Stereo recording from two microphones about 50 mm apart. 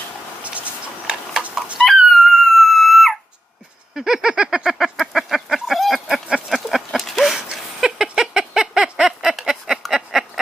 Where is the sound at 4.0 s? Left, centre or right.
Centre.